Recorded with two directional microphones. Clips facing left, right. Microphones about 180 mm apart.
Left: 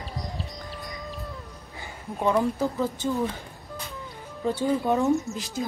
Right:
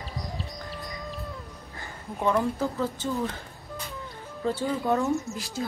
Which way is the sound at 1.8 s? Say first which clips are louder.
Left 2 dB; 15° left (ahead or behind).